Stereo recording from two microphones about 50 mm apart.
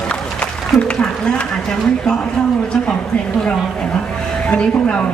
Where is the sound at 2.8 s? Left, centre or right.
Centre.